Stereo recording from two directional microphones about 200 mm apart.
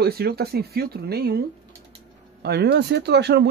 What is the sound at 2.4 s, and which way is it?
Speech, 55° right (ahead or behind).